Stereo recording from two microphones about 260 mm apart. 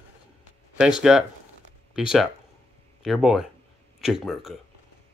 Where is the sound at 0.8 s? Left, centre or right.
Centre.